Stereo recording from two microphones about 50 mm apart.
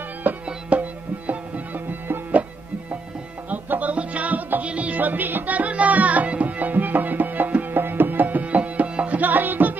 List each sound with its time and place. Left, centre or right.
0.3 s music: right
3.4 s music: right
9.2 s music: right